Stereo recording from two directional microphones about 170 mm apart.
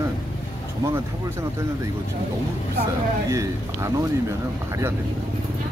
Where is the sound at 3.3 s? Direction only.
15° right (ahead or behind).